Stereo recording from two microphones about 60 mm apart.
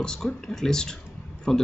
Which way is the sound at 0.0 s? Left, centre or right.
Centre.